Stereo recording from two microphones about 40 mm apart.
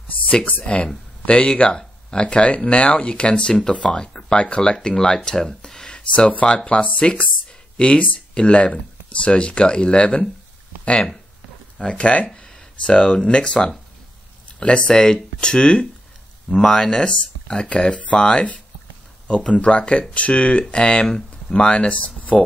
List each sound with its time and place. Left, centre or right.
0.5 s speech: left
4.1 s speech: centre
4.4 s speech: left
4.7 s speech: centre
11.8 s speech: left